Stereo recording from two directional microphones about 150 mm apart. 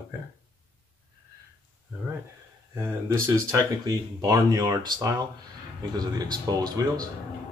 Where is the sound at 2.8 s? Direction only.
15° right (ahead or behind).